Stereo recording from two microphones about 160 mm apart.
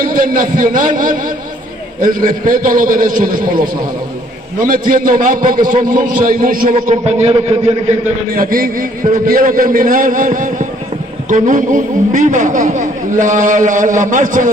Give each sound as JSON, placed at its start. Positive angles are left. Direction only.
{"t": 0.0, "sound": "a man's voice", "side_deg": -60}
{"t": 8.4, "sound": "a man's voice", "side_deg": -65}